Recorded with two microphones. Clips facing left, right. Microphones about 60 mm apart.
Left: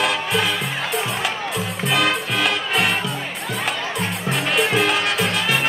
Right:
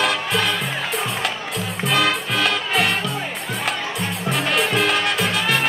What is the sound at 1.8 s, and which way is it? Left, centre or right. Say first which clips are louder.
Music: right 1 dB; centre.